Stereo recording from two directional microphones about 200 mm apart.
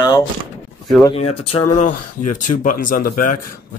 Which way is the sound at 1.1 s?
30° left (ahead or behind).